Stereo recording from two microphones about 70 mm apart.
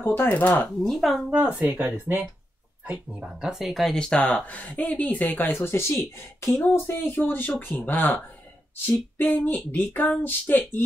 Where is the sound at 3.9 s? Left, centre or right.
Centre.